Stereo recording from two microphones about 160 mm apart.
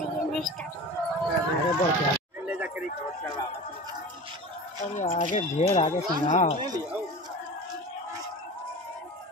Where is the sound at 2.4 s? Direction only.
10° right (ahead or behind).